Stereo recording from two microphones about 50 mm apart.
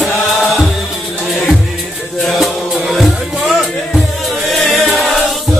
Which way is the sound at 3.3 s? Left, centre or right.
Centre.